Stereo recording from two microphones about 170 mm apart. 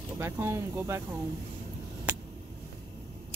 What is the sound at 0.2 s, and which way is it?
Speech, 15° right (ahead or behind).